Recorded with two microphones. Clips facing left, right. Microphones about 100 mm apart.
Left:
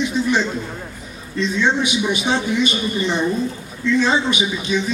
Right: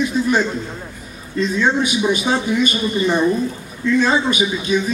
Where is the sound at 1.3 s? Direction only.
45° right (ahead or behind).